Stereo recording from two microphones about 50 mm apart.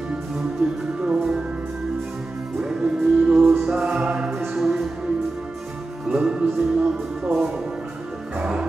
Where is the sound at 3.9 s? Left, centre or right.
Right.